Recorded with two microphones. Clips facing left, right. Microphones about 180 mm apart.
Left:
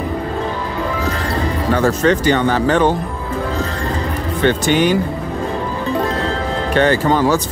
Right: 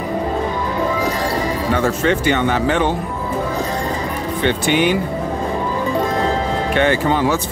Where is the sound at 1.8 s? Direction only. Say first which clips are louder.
Left 4 dB; 40° left (ahead or behind).